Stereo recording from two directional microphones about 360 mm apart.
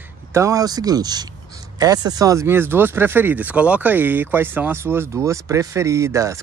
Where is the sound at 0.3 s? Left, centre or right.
Centre.